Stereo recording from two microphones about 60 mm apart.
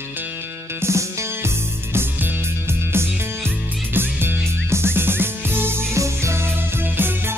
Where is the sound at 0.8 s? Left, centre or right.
Right.